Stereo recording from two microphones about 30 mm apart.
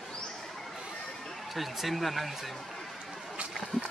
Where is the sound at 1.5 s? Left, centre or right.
Centre.